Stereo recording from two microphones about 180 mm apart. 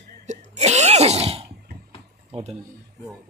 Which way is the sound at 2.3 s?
35° right (ahead or behind).